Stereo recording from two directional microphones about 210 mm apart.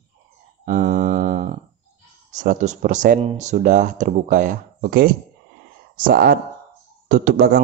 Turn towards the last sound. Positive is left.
turn(degrees=-45)  # may be behind; listen again after turning